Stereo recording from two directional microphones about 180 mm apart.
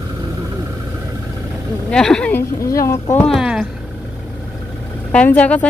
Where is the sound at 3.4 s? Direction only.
5° right (ahead or behind).